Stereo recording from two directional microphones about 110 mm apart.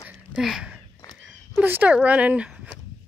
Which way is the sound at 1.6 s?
15° right (ahead or behind).